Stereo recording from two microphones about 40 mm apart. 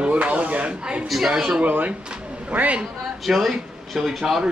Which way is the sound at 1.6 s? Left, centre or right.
Right.